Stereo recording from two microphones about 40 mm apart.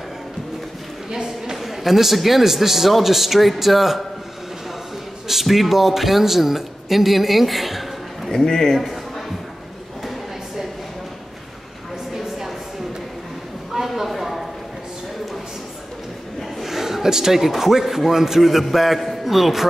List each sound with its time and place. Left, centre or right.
1.1 s speech: centre
5.3 s speech: centre
8.3 s a man's voice: centre
12.1 s a sound: centre
13.8 s a sound: centre
16.6 s a man's voice: centre